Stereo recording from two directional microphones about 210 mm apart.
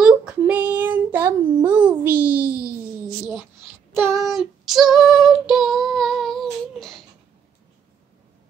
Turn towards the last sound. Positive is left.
turn(degrees=0)  # may be behind; listen again after turning